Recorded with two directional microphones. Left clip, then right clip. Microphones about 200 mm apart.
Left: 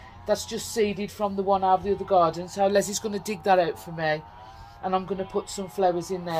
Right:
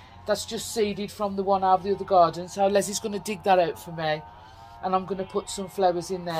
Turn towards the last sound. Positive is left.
turn(degrees=-15)  # may be behind; listen again after turning